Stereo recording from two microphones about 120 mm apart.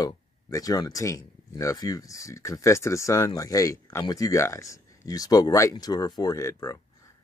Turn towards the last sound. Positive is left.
turn(degrees=25)  # may be behind; listen again after turning